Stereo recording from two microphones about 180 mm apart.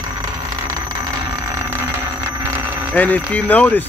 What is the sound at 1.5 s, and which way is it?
Alarm clock, 15° right (ahead or behind).